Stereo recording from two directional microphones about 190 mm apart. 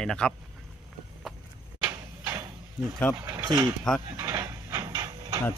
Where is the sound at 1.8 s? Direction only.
15° right (ahead or behind).